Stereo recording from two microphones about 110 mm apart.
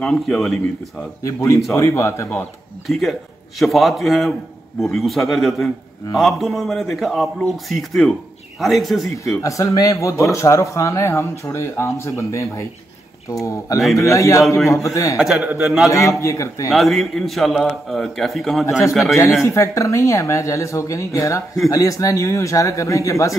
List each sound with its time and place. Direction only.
0.0 s a man's voice: 5° left (ahead or behind)
1.2 s speech: 30° left (ahead or behind)
2.9 s a man's voice: centre (ahead or behind)
9.4 s speech: 30° left (ahead or behind)
15.1 s a man's voice: 5° right (ahead or behind)
15.9 s speech: 30° left (ahead or behind)
16.7 s a man's voice: centre (ahead or behind)
18.7 s speech: 25° left (ahead or behind)